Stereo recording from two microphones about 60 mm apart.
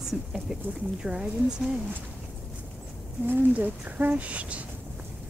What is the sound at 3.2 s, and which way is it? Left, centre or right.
Speech, right.